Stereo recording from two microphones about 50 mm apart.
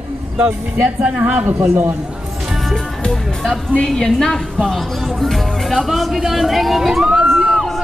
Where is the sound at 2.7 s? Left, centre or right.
Centre.